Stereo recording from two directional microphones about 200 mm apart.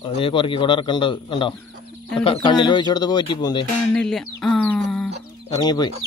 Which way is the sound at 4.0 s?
Centre (ahead or behind).